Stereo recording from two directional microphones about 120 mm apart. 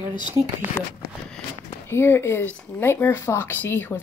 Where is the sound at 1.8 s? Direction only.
20° left (ahead or behind).